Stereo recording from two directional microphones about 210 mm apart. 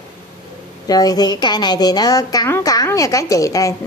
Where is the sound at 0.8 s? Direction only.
20° left (ahead or behind).